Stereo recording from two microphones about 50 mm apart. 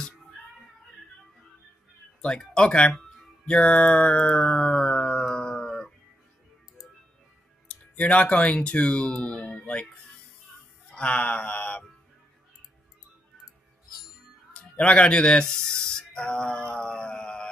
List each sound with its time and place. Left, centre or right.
2.2 s speech: centre
3.4 s music: centre
5.3 s a sound: centre
7.6 s speech: left
10.9 s a sound: left
14.5 s speech: left